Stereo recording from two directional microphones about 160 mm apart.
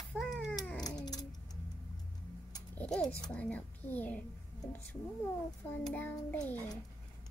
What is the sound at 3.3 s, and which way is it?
Speech, 10° left (ahead or behind).